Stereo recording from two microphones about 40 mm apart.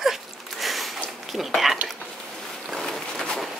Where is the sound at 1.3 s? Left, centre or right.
Centre.